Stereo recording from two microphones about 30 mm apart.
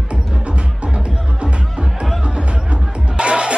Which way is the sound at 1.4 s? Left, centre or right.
Right.